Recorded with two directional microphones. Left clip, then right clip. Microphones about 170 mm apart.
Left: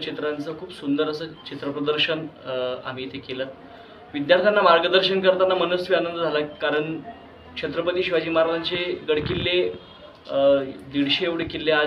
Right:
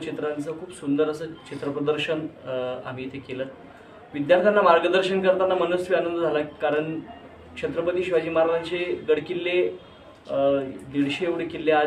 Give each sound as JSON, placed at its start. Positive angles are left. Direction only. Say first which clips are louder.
{"t": 0.0, "sound": "a man's voice", "louder": "left 1 dB", "side_deg": -20}